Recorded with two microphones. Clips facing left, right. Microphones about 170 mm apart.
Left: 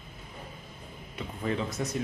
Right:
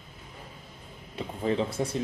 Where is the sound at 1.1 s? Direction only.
30° right (ahead or behind).